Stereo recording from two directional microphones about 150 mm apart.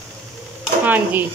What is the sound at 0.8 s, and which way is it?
Speech, 10° right (ahead or behind).